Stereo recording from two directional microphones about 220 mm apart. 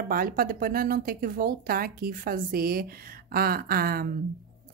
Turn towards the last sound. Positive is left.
turn(degrees=-40)  # may be behind; listen again after turning